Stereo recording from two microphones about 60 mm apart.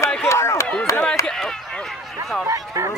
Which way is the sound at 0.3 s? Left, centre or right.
Left.